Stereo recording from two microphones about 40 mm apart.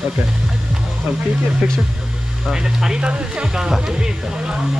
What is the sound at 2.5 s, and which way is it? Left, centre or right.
Speech, centre.